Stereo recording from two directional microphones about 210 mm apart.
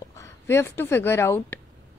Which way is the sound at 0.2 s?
10° left (ahead or behind).